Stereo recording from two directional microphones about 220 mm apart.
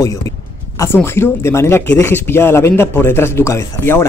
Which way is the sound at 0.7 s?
10° left (ahead or behind).